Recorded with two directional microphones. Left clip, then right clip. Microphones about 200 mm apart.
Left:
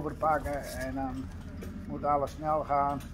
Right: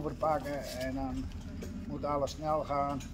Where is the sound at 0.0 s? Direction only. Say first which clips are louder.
Left 3 dB; 15° right (ahead or behind).